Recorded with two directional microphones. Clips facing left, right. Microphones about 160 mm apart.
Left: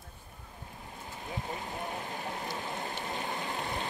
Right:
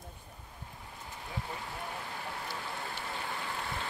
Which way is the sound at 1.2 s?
20° left (ahead or behind).